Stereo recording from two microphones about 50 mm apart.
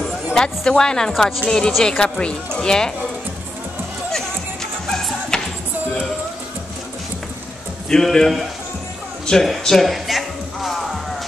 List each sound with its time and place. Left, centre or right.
0.0 s speech: centre
4.8 s music: centre
7.9 s speech: centre
9.2 s a sound: centre
9.7 s music: centre